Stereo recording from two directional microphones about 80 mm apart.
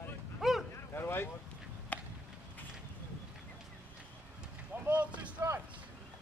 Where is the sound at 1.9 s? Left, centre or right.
Centre.